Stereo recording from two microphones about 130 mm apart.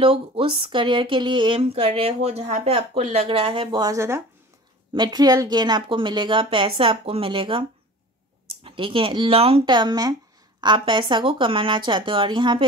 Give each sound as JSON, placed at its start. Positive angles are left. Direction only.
{"t": 0.0, "sound": "speech", "side_deg": -45}
{"t": 4.9, "sound": "a woman's voice", "side_deg": -35}
{"t": 8.6, "sound": "a woman's voice", "side_deg": -45}